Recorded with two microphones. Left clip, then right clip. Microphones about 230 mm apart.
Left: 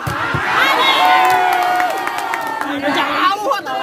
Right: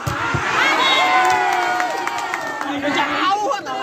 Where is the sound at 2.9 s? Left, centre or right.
Left.